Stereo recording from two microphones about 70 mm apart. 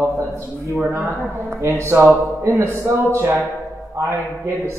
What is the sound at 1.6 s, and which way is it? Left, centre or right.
A man's voice, right.